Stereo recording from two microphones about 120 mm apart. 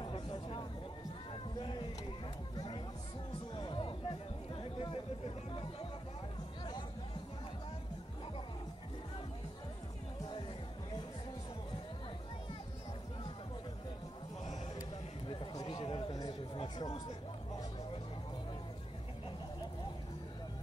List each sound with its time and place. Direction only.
0.0 s a sound: 45° left (ahead or behind)
2.5 s music: 35° left (ahead or behind)
3.5 s chatter: 45° left (ahead or behind)
15.2 s chatter: 45° left (ahead or behind)